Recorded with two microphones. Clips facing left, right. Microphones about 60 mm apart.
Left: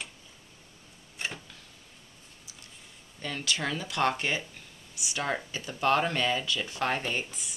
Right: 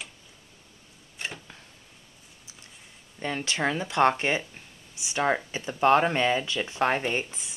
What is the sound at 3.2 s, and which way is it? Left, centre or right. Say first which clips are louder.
Speech: right 4 dB; right.